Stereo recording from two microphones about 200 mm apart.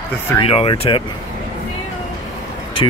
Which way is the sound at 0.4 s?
30° left (ahead or behind).